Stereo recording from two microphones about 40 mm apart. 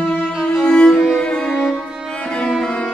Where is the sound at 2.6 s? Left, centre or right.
Left.